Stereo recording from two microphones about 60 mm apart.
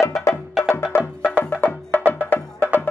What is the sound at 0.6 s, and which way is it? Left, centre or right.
Music, centre.